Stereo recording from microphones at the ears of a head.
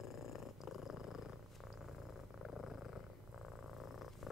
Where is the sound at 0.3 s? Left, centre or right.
Left.